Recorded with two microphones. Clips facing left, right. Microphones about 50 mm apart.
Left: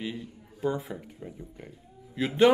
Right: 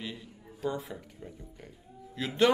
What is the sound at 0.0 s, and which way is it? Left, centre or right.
Speech, centre.